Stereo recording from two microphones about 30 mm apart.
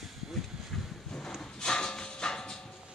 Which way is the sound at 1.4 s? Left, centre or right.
Left.